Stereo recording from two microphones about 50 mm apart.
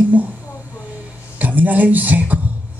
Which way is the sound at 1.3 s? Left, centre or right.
Right.